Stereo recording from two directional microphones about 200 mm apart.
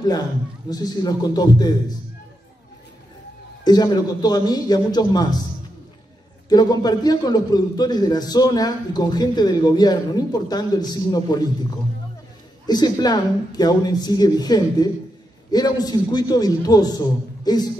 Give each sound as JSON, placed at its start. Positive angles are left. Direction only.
{"t": 0.7, "sound": "a man's voice", "side_deg": 20}
{"t": 3.6, "sound": "a man's voice", "side_deg": 20}
{"t": 6.5, "sound": "a man's voice", "side_deg": 20}
{"t": 12.6, "sound": "a man's voice", "side_deg": 20}